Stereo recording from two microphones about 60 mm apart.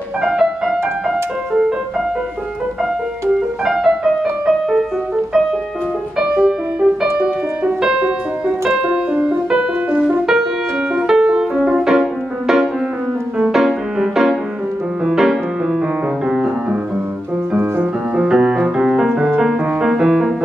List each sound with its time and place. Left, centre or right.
0.2 s music: centre
3.3 s music: centre
6.1 s music: centre
11.1 s music: centre
18.1 s music: centre